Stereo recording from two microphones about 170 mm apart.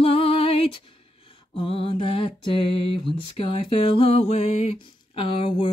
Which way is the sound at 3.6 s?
30° left (ahead or behind).